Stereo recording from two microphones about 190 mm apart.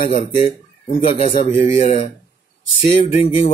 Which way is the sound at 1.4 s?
35° left (ahead or behind).